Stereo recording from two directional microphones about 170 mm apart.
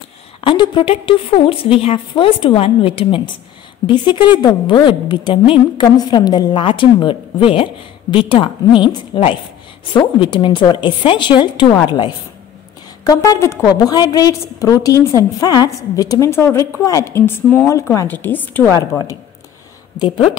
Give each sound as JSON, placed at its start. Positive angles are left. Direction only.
{"t": 0.4, "sound": "a woman's voice", "side_deg": 30}
{"t": 18.8, "sound": "a woman's voice", "side_deg": 20}